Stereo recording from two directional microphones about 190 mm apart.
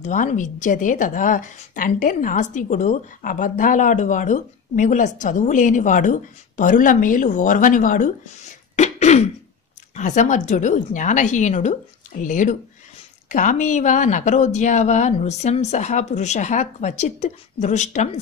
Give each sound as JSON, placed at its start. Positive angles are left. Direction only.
{"t": 0.0, "sound": "a woman's voice", "side_deg": 40}